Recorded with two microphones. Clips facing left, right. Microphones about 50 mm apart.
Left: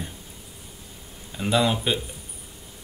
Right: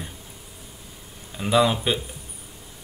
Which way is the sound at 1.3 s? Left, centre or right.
Centre.